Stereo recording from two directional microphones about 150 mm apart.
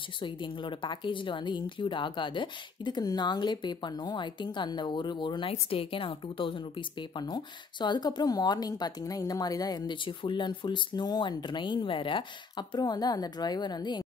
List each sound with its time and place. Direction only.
0.2 s speech: 35° left (ahead or behind)